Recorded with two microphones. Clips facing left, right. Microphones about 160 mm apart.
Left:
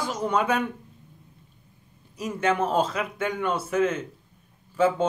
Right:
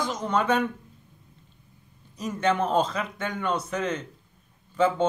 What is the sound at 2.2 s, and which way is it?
A man's voice, 5° left (ahead or behind).